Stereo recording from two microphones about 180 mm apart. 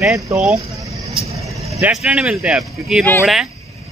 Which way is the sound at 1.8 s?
5° right (ahead or behind).